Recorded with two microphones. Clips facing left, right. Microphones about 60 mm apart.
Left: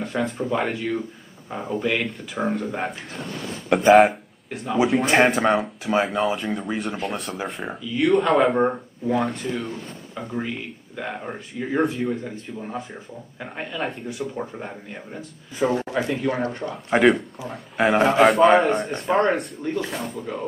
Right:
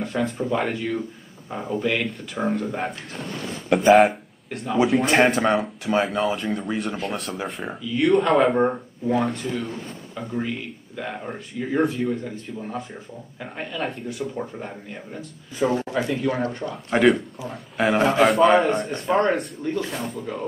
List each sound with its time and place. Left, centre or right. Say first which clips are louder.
0.0 s speech: even; centre